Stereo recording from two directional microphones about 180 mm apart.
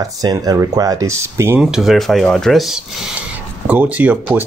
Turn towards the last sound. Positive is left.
turn(degrees=-10)  # may be behind; listen again after turning